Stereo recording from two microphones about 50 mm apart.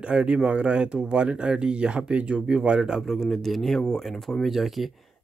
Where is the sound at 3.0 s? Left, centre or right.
Centre.